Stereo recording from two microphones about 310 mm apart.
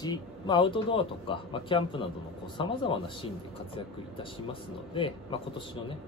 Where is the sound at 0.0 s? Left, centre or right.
Centre.